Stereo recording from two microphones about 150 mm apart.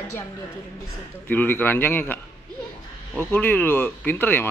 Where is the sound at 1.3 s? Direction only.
10° left (ahead or behind).